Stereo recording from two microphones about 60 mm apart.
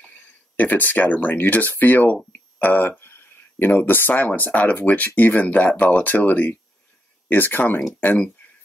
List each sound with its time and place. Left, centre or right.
0.6 s speech: left
3.0 s a sound: left
4.1 s speech: left